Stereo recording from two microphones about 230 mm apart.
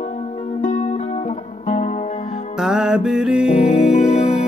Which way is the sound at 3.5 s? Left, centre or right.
Left.